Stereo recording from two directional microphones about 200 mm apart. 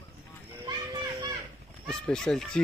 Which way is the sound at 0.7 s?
20° right (ahead or behind).